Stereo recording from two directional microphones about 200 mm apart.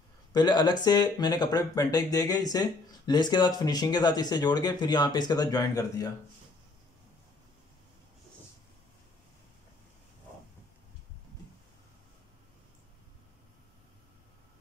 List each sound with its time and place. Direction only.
0.3 s speech: 20° left (ahead or behind)